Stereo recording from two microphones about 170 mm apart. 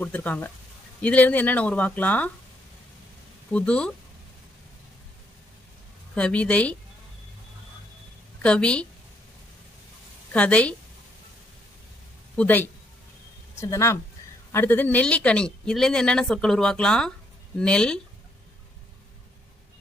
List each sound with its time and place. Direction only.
0.0 s speech: 10° left (ahead or behind)
3.5 s speech: 5° left (ahead or behind)
6.1 s speech: 5° left (ahead or behind)
8.4 s a woman's voice: 5° left (ahead or behind)
10.3 s speech: 10° left (ahead or behind)
12.4 s speech: 10° left (ahead or behind)